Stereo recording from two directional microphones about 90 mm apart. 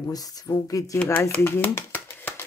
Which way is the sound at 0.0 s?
45° left (ahead or behind).